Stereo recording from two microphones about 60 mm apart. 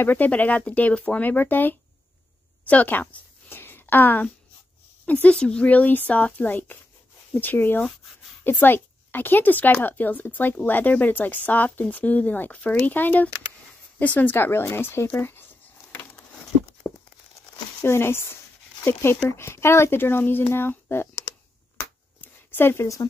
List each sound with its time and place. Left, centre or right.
0.0 s speech: left
2.6 s a sound: left
5.0 s a woman's voice: left
5.3 s speech: centre
5.7 s speech: left
14.3 s speech: left
15.9 s a sound: left
16.8 s tearing: left
17.8 s speech: left
22.2 s a sound: left